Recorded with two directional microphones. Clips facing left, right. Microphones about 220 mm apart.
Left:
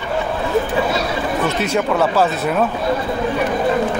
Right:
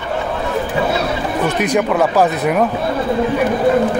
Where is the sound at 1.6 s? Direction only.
15° right (ahead or behind).